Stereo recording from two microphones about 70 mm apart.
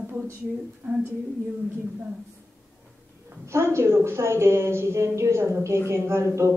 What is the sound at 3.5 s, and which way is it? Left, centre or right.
Speech, right.